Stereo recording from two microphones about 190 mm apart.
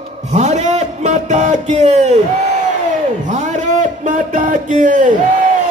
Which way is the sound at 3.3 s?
40° right (ahead or behind).